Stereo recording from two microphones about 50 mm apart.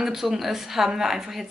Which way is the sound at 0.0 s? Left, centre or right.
Centre.